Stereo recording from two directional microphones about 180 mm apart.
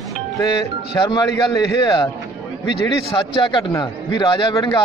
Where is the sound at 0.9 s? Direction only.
20° left (ahead or behind).